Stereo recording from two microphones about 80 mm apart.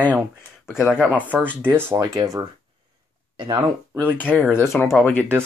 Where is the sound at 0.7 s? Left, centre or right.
Centre.